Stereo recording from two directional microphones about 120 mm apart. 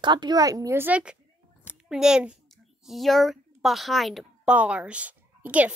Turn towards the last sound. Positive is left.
turn(degrees=-10)  # may be behind; listen again after turning